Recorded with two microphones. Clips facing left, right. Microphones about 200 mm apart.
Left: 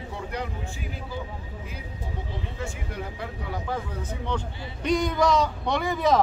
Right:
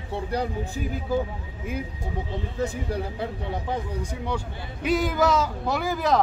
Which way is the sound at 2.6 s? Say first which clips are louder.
Right 9 dB; 35° right (ahead or behind).